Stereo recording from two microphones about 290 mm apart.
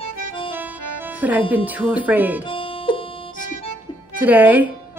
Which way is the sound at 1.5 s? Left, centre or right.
Centre.